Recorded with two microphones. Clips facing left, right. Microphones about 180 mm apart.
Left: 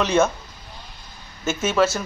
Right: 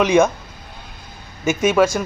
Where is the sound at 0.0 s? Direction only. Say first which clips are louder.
Right 4 dB; 15° right (ahead or behind).